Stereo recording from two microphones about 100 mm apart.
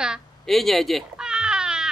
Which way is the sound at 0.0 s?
5° right (ahead or behind).